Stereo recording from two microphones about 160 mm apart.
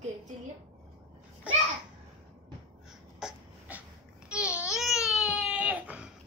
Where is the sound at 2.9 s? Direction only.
5° right (ahead or behind).